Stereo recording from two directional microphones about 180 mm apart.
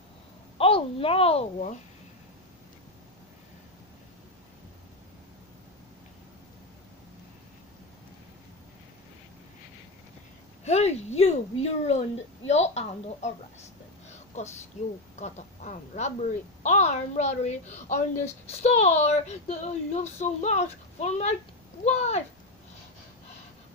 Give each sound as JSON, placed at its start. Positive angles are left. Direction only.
{"t": 0.6, "sound": "a child's voice", "side_deg": 30}
{"t": 10.6, "sound": "a woman's voice", "side_deg": 35}
{"t": 14.8, "sound": "a woman's voice", "side_deg": 40}